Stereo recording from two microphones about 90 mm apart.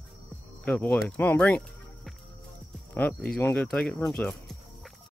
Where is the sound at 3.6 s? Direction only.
5° left (ahead or behind).